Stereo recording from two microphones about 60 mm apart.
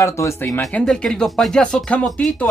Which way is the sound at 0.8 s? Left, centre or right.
Centre.